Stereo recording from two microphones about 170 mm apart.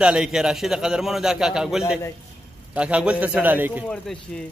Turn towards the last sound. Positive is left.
turn(degrees=-10)  # may be behind; listen again after turning